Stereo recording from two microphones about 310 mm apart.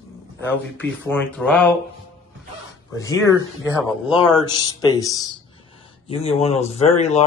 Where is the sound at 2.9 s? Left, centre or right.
Centre.